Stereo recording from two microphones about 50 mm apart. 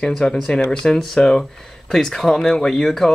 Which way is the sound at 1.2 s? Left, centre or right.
Left.